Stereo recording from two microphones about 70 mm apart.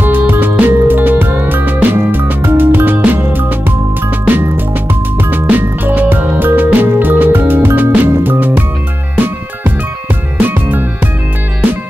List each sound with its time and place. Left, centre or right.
0.0 s music: right
5.3 s music: right
10.4 s music: right